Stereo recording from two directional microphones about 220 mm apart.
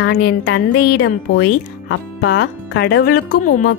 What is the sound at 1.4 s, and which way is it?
A woman's voice, 60° left (ahead or behind).